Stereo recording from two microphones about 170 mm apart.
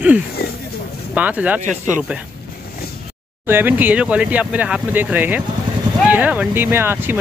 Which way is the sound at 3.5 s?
10° right (ahead or behind).